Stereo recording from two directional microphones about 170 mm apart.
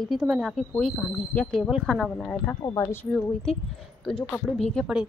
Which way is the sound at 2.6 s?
20° left (ahead or behind).